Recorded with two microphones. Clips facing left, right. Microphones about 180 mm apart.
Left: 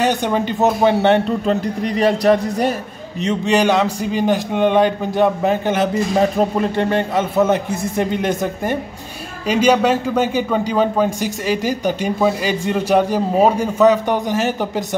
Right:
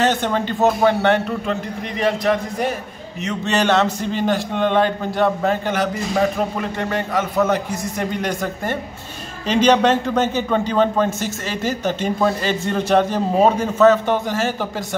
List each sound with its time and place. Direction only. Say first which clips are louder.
0.0 s a man's voice: left 1 dB; 15° left (ahead or behind)
1.5 s a man's voice: left 6 dB; 35° left (ahead or behind)
3.4 s a man's voice: left 1 dB; 10° left (ahead or behind)
9.5 s a man's voice: left 1 dB; 10° left (ahead or behind)